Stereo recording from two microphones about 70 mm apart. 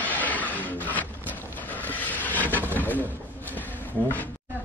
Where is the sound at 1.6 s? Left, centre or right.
Left.